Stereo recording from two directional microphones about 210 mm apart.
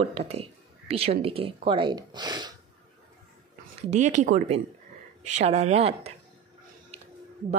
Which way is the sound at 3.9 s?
35° right (ahead or behind).